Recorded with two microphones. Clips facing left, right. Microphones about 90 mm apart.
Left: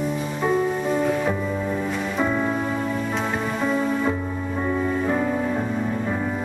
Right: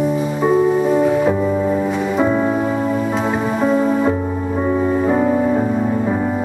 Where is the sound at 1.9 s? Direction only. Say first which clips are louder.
Right 7 dB; 5° right (ahead or behind).